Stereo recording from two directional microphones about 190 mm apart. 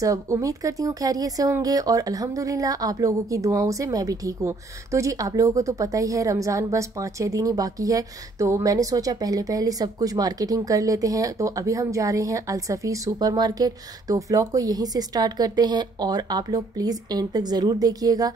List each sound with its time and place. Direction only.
0.0 s speech: 15° right (ahead or behind)